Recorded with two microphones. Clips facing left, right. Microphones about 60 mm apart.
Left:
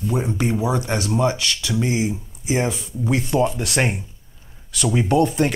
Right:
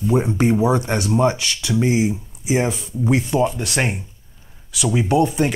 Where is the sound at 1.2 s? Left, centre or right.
Centre.